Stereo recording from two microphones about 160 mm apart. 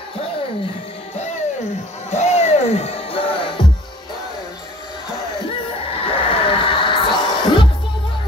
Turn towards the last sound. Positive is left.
turn(degrees=30)  # may be behind; listen again after turning